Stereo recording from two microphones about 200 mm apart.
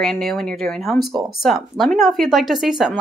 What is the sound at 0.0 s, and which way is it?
Speech, centre (ahead or behind).